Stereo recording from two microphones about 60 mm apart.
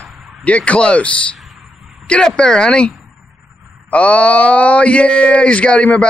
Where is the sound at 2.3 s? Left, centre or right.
Centre.